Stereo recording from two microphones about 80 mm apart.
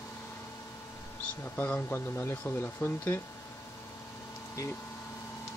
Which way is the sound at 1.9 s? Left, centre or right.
Left.